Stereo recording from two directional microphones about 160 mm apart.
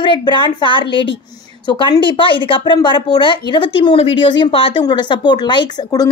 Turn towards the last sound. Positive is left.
turn(degrees=25)  # may be behind; listen again after turning